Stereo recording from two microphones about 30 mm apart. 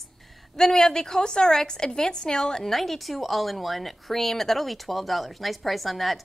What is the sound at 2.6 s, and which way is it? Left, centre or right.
A woman's voice, centre.